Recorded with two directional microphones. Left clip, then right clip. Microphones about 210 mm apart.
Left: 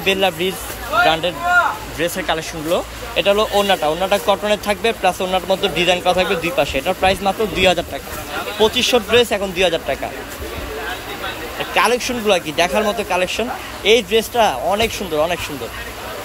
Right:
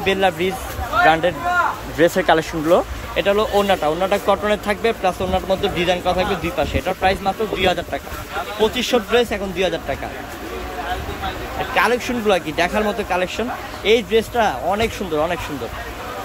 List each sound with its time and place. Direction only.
0.0 s speech: 10° right (ahead or behind)
2.0 s speech: 25° right (ahead or behind)
3.2 s speech: 10° right (ahead or behind)
11.7 s speech: 10° right (ahead or behind)